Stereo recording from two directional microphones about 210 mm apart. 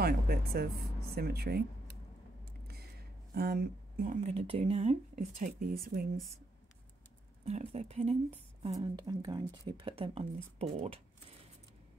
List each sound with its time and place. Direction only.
0.0 s speech: 50° right (ahead or behind)
2.4 s a sound: 50° right (ahead or behind)
3.3 s speech: 45° right (ahead or behind)
7.4 s speech: 30° right (ahead or behind)